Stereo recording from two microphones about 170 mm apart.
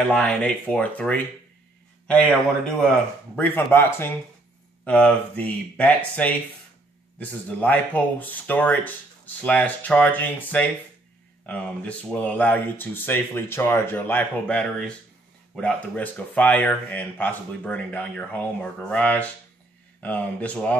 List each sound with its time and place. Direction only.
0.1 s speech: 5° left (ahead or behind)
3.3 s speech: 10° left (ahead or behind)